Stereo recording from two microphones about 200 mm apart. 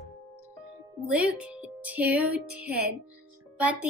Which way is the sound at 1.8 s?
5° right (ahead or behind).